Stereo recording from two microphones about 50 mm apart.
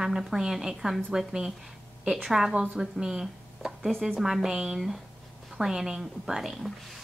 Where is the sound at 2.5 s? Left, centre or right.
Right.